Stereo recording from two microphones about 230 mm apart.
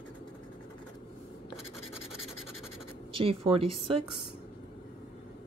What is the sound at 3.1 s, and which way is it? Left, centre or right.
Speech, right.